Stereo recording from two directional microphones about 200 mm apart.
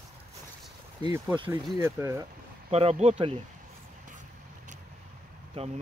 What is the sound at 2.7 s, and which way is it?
Speech, 30° right (ahead or behind).